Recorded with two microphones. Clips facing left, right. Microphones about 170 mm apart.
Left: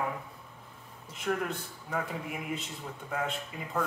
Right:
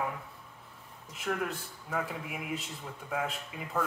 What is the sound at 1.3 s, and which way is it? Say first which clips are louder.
A man's voice: left 2 dB; 5° left (ahead or behind).